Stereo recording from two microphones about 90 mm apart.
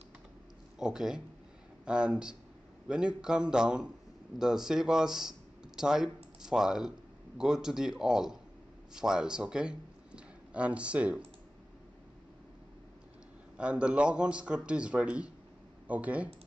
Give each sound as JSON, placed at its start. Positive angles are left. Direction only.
{"t": 0.7, "sound": "a man's voice", "side_deg": -5}
{"t": 13.6, "sound": "a man's voice", "side_deg": -15}